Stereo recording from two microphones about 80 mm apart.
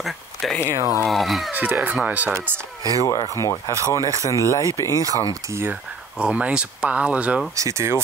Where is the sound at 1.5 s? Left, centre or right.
Right.